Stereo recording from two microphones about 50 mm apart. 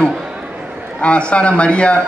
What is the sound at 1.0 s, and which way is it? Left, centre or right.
Speech, left.